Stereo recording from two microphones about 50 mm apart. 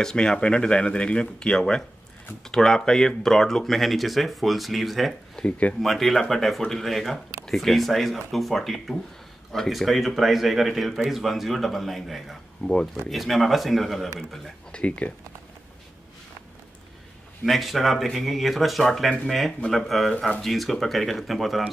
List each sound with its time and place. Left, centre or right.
0.0 s speech: centre
5.4 s speech: centre
5.8 s speech: centre
12.6 s speech: left
13.1 s speech: centre
14.7 s speech: left
17.5 s speech: centre